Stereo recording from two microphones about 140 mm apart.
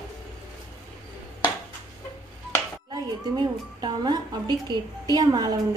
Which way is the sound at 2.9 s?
30° right (ahead or behind).